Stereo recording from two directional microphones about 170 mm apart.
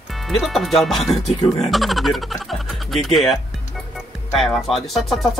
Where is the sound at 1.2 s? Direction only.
40° left (ahead or behind).